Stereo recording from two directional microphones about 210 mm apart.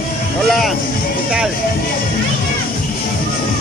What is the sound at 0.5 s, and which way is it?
Speech, centre (ahead or behind).